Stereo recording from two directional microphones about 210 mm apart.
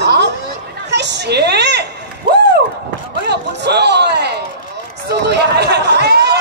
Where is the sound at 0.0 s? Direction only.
55° right (ahead or behind).